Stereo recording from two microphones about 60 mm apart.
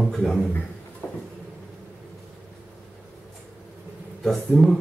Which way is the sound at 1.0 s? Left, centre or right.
Left.